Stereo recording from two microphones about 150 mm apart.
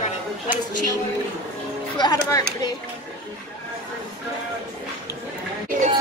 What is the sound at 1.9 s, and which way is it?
Speech, 30° left (ahead or behind).